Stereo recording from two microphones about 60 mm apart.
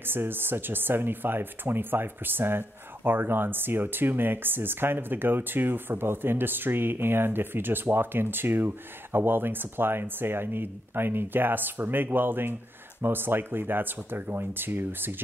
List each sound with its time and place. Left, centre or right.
0.0 s speech: right